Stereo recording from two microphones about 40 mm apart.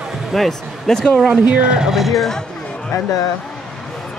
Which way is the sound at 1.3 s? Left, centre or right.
Right.